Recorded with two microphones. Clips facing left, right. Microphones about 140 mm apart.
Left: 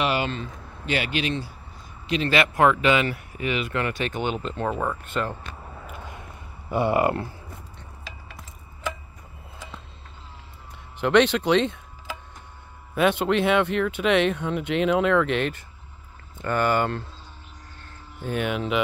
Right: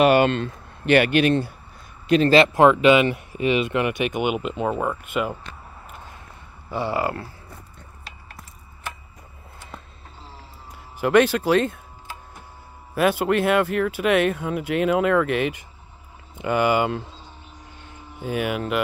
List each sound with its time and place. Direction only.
0.0 s speech: 55° right (ahead or behind)
2.3 s speech: 25° right (ahead or behind); by 5.3 s 10° right (ahead or behind)
6.7 s speech: 20° left (ahead or behind)
11.0 s speech: 5° right (ahead or behind)
12.9 s speech: 5° right (ahead or behind)
18.2 s speech: 5° right (ahead or behind)